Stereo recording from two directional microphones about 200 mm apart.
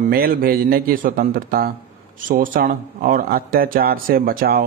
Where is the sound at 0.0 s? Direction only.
50° right (ahead or behind).